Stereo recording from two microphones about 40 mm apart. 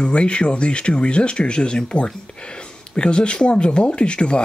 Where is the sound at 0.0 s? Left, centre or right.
Left.